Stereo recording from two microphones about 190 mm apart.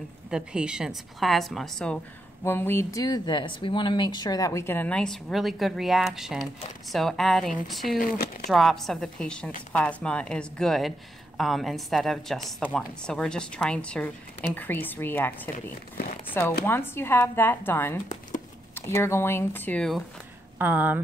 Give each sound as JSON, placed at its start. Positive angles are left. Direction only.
{"t": 0.3, "sound": "a woman's voice", "side_deg": -5}
{"t": 8.0, "sound": "speech", "side_deg": 50}
{"t": 8.5, "sound": "a woman's voice", "side_deg": 0}
{"t": 15.5, "sound": "speech", "side_deg": 45}
{"t": 16.6, "sound": "speech", "side_deg": 10}
{"t": 20.5, "sound": "speech", "side_deg": -10}